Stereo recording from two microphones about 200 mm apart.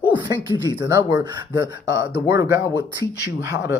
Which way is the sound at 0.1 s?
20° right (ahead or behind).